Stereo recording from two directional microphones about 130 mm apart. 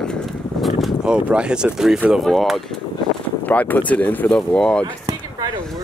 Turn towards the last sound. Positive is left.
turn(degrees=-30)  # may be behind; listen again after turning